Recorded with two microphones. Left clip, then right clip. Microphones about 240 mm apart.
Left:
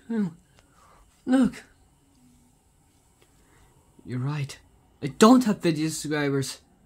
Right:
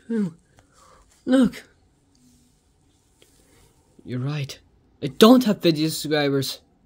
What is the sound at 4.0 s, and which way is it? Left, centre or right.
A man's voice, centre.